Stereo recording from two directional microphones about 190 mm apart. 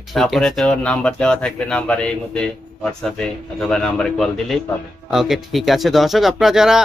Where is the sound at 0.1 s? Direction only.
Centre (ahead or behind).